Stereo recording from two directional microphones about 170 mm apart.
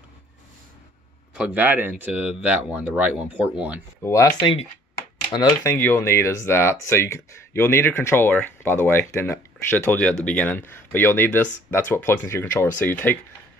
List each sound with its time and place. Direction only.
1.3 s speech: 10° right (ahead or behind)
4.0 s speech: 20° left (ahead or behind)